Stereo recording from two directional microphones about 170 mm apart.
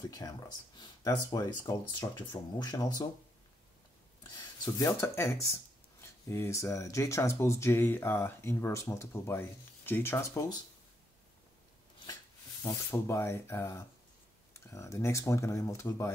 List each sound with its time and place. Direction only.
1.3 s speech: 20° left (ahead or behind)
4.7 s speech: 15° left (ahead or behind)
12.6 s speech: 20° left (ahead or behind)